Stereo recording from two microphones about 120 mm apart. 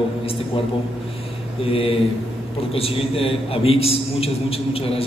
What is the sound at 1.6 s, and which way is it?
A man's voice, 50° left (ahead or behind).